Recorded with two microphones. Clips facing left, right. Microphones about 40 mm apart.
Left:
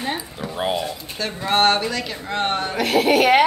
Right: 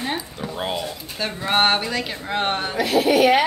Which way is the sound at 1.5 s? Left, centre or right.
Centre.